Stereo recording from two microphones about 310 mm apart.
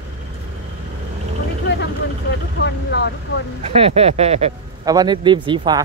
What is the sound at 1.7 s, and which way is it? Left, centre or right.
Vehicle, left.